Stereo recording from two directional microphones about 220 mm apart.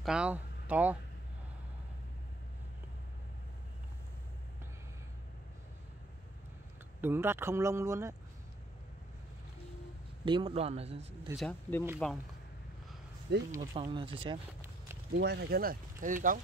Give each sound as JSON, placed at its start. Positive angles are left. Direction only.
{"t": 0.0, "sound": "speech", "side_deg": -5}
{"t": 7.0, "sound": "speech", "side_deg": -10}
{"t": 10.2, "sound": "a man's voice", "side_deg": -25}
{"t": 11.3, "sound": "speech", "side_deg": 5}
{"t": 13.5, "sound": "a man's voice", "side_deg": -15}
{"t": 15.1, "sound": "speech", "side_deg": -45}